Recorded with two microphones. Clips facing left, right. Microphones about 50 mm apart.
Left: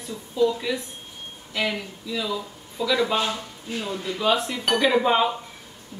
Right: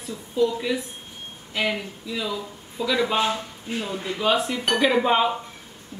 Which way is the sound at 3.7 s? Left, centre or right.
Right.